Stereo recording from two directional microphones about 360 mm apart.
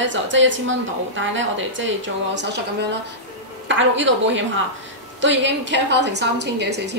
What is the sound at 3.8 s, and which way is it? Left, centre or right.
A woman's voice, right.